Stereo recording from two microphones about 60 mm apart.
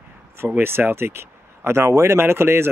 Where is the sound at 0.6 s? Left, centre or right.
Right.